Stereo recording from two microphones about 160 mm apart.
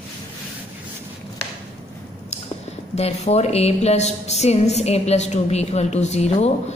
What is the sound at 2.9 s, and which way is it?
A woman's voice, 40° left (ahead or behind).